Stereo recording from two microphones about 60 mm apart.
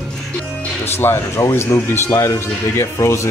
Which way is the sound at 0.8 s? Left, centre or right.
Left.